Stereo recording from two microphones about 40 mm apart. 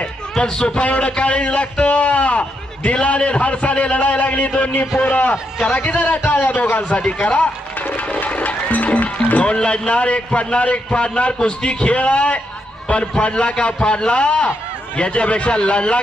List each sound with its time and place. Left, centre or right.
0.6 s a man's voice: left
0.8 s a man's voice: left
7.0 s music: left
9.4 s a man's voice: left
13.1 s a man's voice: left